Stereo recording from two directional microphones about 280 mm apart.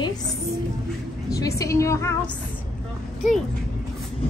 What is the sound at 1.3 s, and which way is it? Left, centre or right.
Speech, centre.